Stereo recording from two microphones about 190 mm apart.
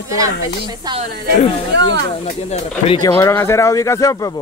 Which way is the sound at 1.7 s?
60° right (ahead or behind).